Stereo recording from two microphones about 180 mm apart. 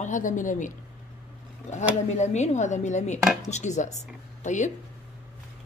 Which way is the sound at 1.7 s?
40° left (ahead or behind).